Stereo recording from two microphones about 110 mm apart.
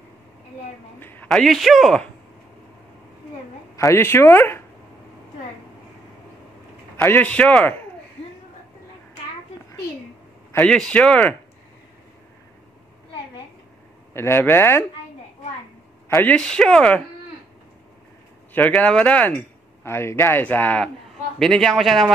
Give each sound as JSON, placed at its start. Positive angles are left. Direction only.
{"t": 0.9, "sound": "a sound", "side_deg": 20}
{"t": 1.3, "sound": "a man's voice", "side_deg": 0}
{"t": 3.7, "sound": "speech", "side_deg": 25}
{"t": 7.0, "sound": "speech", "side_deg": 15}
{"t": 10.6, "sound": "speech", "side_deg": 10}
{"t": 14.1, "sound": "speech", "side_deg": 20}
{"t": 16.3, "sound": "speech", "side_deg": 5}
{"t": 18.7, "sound": "a man's voice", "side_deg": 10}